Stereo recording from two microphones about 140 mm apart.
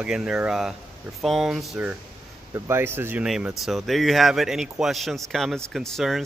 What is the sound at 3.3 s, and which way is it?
Speech, 5° right (ahead or behind).